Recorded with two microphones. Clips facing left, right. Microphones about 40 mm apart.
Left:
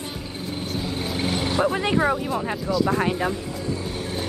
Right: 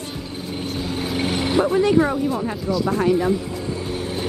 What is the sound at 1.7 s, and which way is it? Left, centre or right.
Speech, left.